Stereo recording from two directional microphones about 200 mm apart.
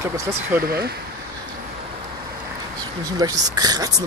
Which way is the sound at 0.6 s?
50° right (ahead or behind).